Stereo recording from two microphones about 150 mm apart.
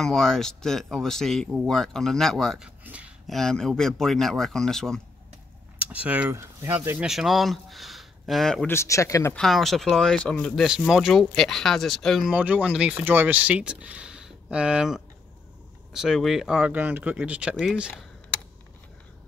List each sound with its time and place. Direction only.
0.0 s speech: 5° left (ahead or behind)
2.8 s a sound: 10° right (ahead or behind)
3.3 s speech: 5° left (ahead or behind)
5.8 s speech: 10° right (ahead or behind)
7.1 s speech: centre (ahead or behind)
8.6 s speech: 20° left (ahead or behind)
9.3 s speech: centre (ahead or behind)